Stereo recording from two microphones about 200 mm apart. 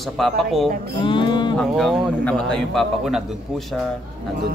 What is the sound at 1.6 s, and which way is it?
Speech, centre (ahead or behind).